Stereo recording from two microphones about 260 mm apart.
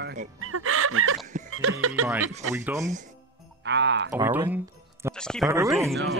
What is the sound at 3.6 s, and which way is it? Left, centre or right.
Speech, right.